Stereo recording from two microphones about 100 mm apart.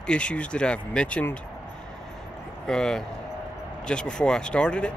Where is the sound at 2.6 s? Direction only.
5° left (ahead or behind).